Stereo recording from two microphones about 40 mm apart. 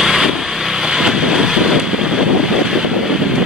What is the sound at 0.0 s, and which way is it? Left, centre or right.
Vehicle, centre.